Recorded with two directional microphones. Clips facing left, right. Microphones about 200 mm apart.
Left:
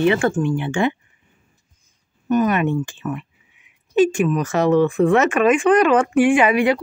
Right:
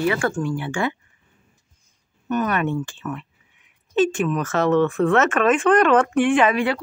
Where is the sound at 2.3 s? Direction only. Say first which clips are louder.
Left 4 dB; 15° left (ahead or behind).